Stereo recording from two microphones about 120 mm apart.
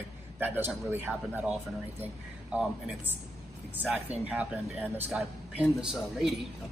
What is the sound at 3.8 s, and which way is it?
A man's voice, 10° right (ahead or behind).